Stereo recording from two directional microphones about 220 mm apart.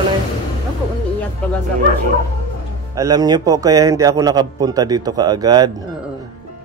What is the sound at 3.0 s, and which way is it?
A man's voice, 15° right (ahead or behind).